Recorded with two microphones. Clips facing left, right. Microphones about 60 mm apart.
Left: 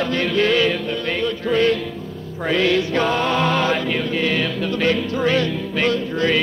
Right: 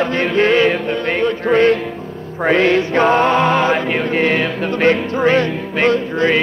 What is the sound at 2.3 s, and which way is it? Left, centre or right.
Music, right.